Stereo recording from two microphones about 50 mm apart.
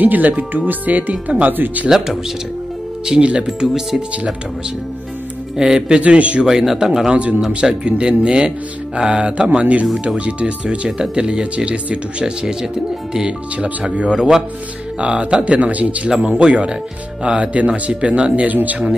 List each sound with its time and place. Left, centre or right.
0.0 s speech: right
1.9 s speech: centre
3.1 s speech: centre
5.6 s speech: centre
6.4 s speech: centre
7.1 s speech: right
13.6 s speech: right
16.1 s speech: centre
16.3 s speech: right